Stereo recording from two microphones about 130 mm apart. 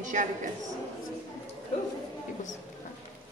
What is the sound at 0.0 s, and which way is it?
Speech, 75° right (ahead or behind).